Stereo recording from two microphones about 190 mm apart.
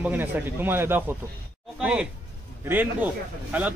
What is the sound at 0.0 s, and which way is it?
A man's voice, 10° right (ahead or behind).